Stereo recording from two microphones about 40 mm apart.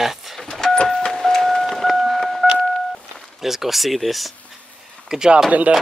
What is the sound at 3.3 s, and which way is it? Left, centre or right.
Speech, centre.